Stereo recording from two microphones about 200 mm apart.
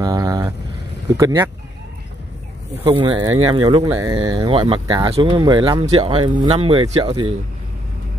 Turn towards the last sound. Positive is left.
turn(degrees=-25)  # may be behind; listen again after turning